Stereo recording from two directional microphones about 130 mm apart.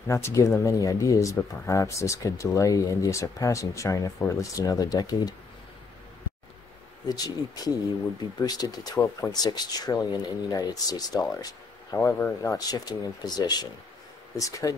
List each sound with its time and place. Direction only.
0.1 s speech: 25° left (ahead or behind)
7.1 s speech: 30° left (ahead or behind)